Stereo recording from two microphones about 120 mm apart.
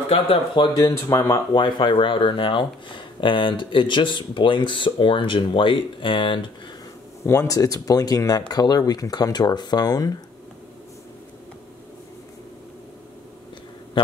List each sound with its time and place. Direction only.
0.1 s speech: 50° left (ahead or behind)
0.7 s speech: 35° left (ahead or behind)
7.2 s speech: 25° left (ahead or behind)